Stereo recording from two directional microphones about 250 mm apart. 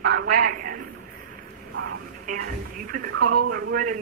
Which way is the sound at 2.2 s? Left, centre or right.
Right.